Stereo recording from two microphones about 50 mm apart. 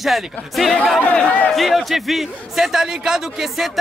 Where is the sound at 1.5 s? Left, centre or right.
Centre.